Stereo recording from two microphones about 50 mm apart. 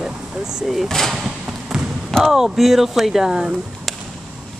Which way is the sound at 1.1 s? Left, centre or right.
Centre.